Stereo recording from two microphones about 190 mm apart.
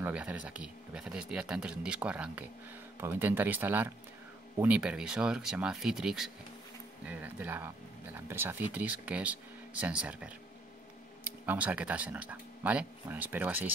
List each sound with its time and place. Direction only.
0.0 s speech: 5° right (ahead or behind)
11.4 s speech: 5° right (ahead or behind)